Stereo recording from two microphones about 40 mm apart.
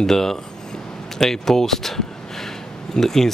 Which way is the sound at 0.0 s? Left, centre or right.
Centre.